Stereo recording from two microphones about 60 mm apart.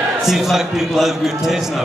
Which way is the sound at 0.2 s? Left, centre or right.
Centre.